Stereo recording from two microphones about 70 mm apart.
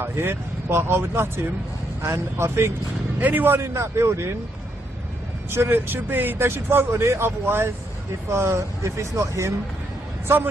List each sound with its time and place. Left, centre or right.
0.0 s speech: right
3.2 s a man's voice: right
3.7 s speech: right
5.5 s speech: right